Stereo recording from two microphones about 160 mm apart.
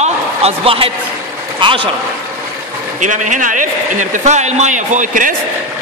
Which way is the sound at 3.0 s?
50° right (ahead or behind).